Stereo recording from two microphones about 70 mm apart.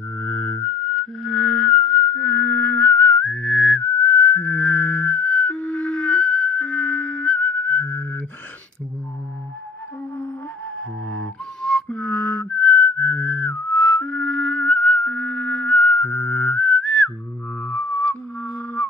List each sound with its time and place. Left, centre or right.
0.2 s a sound: centre
10.8 s flute: centre
11.6 s music: centre
12.0 s whistling: left
17.6 s music: left